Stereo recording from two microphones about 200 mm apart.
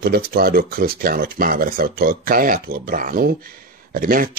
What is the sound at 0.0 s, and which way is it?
Speech, 50° right (ahead or behind).